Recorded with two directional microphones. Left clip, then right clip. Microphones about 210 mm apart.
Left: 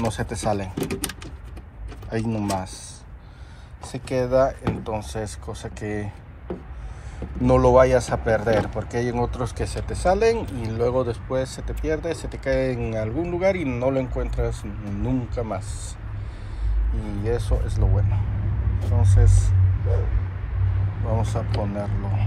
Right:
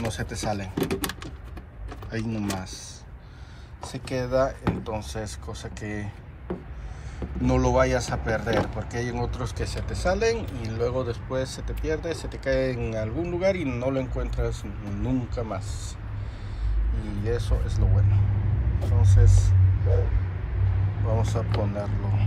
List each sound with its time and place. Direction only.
0.0 s speech: centre (ahead or behind)
2.0 s speech: centre (ahead or behind)
3.8 s speech: 15° right (ahead or behind)
7.2 s speech: centre (ahead or behind)
17.0 s speech: 10° right (ahead or behind)
21.1 s speech: 20° right (ahead or behind)